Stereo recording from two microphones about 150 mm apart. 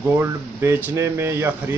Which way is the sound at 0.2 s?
15° right (ahead or behind).